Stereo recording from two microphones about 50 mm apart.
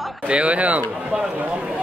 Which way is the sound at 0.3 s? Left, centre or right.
Right.